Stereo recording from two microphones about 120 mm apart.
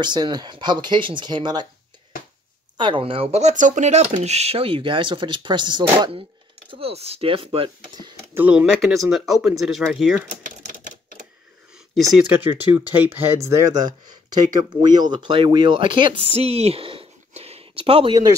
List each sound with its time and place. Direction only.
0.0 s speech: 35° right (ahead or behind)
2.8 s speech: 45° right (ahead or behind)
6.7 s speech: 55° right (ahead or behind)
8.4 s speech: 10° right (ahead or behind)
12.3 s speech: 15° right (ahead or behind); by 17.1 s 50° right (ahead or behind)
17.3 s a sound: 60° right (ahead or behind)